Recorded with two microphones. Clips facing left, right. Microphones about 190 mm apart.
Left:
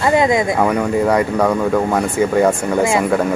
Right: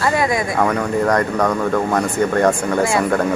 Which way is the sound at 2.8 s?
20° left (ahead or behind).